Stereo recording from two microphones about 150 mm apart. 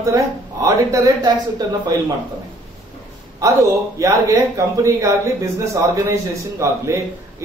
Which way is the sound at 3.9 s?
20° right (ahead or behind).